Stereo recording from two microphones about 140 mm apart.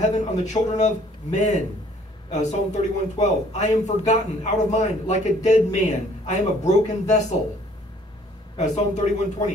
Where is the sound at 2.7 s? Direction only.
55° left (ahead or behind).